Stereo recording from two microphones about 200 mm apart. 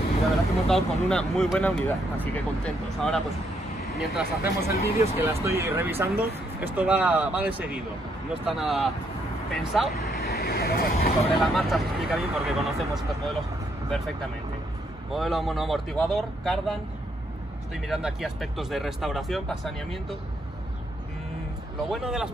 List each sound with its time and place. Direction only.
0.7 s speech: centre (ahead or behind)
4.4 s speech: 50° left (ahead or behind)
5.0 s speech: 15° right (ahead or behind)
10.1 s speech: 50° left (ahead or behind)
11.3 s speech: centre (ahead or behind)
15.1 s speech: centre (ahead or behind)
17.7 s speech: centre (ahead or behind)
21.8 s speech: centre (ahead or behind)